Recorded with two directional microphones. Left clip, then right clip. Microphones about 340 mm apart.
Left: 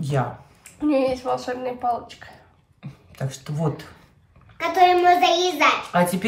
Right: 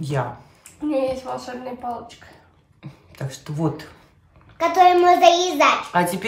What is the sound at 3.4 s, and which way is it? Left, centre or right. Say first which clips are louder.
A woman's voice: right 3 dB; centre.